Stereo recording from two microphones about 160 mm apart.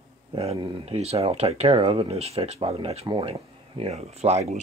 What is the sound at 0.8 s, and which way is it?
Speech, 40° right (ahead or behind).